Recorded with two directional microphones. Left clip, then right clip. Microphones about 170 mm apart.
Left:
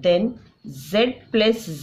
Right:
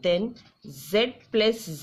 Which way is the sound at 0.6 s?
35° right (ahead or behind).